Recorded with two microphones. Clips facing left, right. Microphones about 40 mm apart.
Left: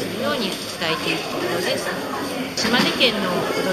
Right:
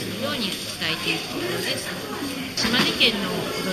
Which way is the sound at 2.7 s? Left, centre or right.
Centre.